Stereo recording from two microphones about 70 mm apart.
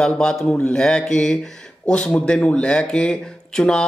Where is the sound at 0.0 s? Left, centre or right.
Centre.